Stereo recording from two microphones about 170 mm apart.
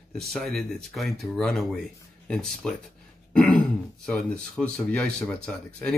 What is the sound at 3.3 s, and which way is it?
Throat clearing, 5° left (ahead or behind).